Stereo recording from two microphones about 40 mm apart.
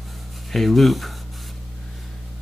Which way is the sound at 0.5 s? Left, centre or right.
Centre.